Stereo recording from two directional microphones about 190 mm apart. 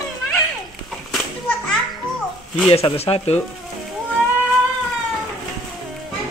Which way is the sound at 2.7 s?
30° left (ahead or behind).